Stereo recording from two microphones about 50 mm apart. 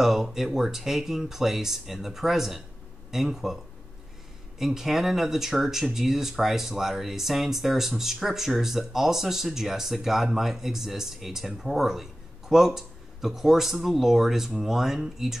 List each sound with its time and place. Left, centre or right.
0.0 s speech: centre
4.6 s speech: centre